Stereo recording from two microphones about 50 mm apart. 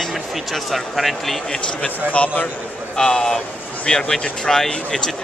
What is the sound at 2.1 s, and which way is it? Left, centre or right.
Speech, left.